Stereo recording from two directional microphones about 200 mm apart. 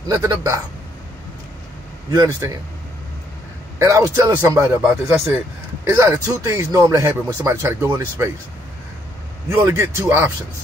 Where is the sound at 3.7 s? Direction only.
15° right (ahead or behind).